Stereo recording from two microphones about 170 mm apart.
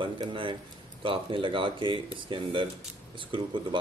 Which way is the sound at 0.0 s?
30° right (ahead or behind).